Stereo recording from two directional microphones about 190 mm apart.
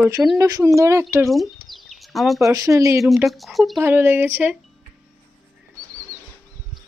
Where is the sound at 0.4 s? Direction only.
20° right (ahead or behind).